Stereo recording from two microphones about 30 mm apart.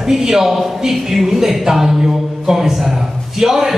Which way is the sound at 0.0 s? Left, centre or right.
Centre.